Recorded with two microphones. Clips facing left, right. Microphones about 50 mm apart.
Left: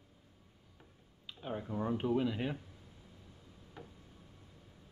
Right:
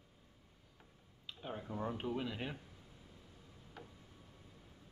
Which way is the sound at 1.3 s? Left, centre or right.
Centre.